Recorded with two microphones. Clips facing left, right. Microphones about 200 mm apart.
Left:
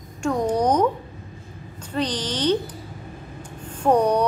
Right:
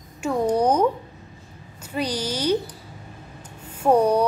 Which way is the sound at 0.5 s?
10° right (ahead or behind).